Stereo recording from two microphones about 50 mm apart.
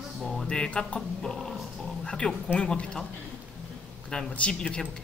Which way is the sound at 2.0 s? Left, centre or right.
Centre.